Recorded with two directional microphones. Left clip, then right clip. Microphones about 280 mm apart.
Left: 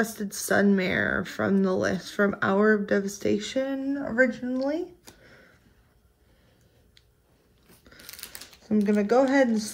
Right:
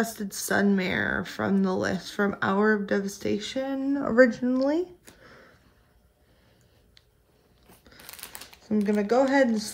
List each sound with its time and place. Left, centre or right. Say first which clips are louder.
0.0 s speech: left 1 dB; centre
5.2 s sniff: right 2 dB; centre
8.0 s typing: even; right
8.6 s speech: left 1 dB; centre